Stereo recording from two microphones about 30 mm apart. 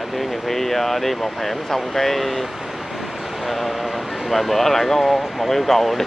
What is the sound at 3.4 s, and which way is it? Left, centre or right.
Speech, centre.